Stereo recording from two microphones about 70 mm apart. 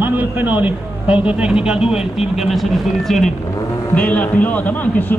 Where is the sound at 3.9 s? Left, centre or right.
Left.